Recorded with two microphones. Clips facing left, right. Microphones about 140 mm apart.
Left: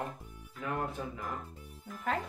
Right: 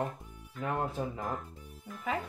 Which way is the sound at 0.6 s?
35° right (ahead or behind).